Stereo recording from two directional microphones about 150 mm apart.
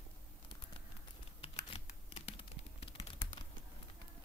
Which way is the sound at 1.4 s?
40° left (ahead or behind).